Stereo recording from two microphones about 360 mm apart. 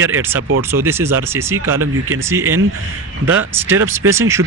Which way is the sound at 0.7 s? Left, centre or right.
Centre.